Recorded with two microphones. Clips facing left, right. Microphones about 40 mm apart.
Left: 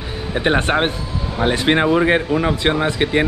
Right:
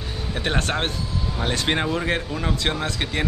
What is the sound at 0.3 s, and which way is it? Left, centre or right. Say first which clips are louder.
Speech: left 8 dB; left.